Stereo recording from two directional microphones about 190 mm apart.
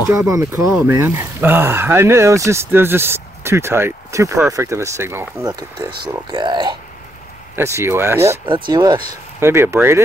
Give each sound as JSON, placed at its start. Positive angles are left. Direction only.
{"t": 0.1, "sound": "speech", "side_deg": -15}
{"t": 8.5, "sound": "speech", "side_deg": -25}